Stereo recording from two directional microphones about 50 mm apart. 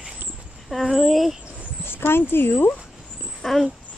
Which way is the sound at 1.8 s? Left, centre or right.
Left.